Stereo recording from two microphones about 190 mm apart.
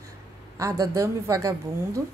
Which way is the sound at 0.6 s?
15° right (ahead or behind).